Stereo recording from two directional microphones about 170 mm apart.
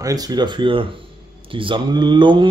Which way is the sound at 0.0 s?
20° right (ahead or behind).